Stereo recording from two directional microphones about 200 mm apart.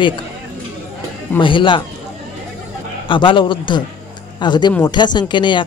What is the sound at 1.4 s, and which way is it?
Speech, 25° left (ahead or behind).